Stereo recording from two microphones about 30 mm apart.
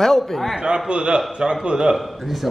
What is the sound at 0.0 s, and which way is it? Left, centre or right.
Speech, centre.